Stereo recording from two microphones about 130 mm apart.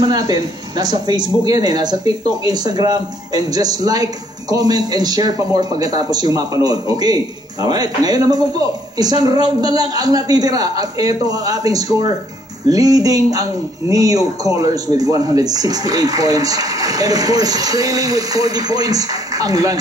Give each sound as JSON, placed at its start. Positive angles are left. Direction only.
{"t": 0.0, "sound": "speech", "side_deg": -30}